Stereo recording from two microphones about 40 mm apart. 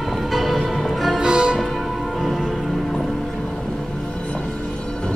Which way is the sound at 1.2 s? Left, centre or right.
Right.